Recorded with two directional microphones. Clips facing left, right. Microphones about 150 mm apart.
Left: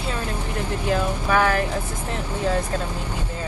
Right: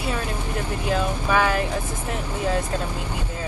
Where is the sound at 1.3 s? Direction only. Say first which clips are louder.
Left 1 dB; 10° right (ahead or behind).